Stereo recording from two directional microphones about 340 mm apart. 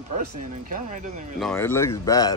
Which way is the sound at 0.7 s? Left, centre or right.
Right.